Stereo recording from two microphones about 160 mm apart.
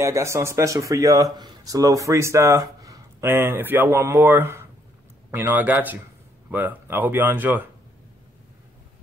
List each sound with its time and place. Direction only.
0.0 s speech: 15° right (ahead or behind)